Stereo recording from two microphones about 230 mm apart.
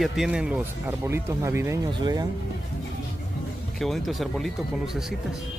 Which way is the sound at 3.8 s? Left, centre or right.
Centre.